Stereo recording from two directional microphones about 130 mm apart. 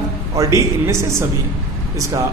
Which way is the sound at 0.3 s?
25° right (ahead or behind).